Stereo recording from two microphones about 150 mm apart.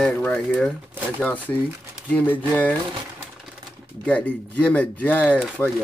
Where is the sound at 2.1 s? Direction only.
10° left (ahead or behind).